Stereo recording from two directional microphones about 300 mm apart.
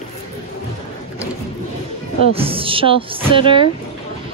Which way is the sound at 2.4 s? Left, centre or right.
Centre.